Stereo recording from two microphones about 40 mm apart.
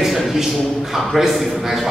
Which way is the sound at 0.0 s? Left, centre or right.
Centre.